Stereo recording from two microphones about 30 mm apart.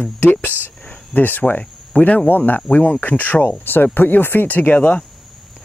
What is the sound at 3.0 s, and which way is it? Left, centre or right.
Speech, left.